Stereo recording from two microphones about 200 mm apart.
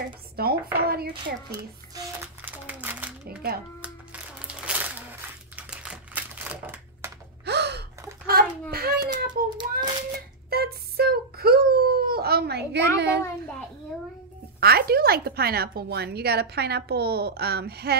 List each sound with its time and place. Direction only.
0.4 s speech: 50° right (ahead or behind)
1.5 s a sound: 15° right (ahead or behind)
4.6 s a sound: 10° right (ahead or behind)
5.6 s typewriter: 5° right (ahead or behind)
7.4 s gasp: 55° right (ahead or behind)
8.3 s a sound: 50° right (ahead or behind)
9.3 s child singing: 20° right (ahead or behind)
10.5 s wail: 50° right (ahead or behind)
14.6 s a woman's voice: 50° right (ahead or behind)